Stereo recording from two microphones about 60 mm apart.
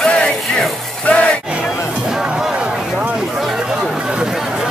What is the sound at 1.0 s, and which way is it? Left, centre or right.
Music, left.